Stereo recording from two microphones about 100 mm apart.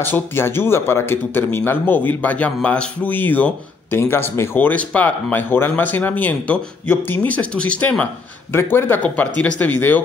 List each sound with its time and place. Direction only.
0.0 s speech: 20° left (ahead or behind)